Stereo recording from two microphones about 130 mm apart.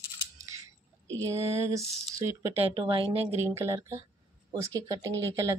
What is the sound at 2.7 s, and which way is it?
Speech, 40° right (ahead or behind).